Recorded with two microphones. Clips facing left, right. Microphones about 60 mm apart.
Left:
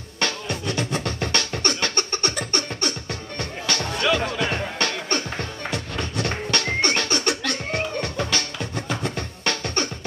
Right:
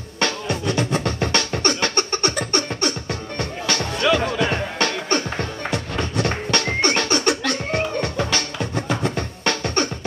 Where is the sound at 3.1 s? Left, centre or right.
Right.